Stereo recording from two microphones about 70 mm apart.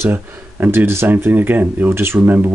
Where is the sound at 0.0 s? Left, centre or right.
Right.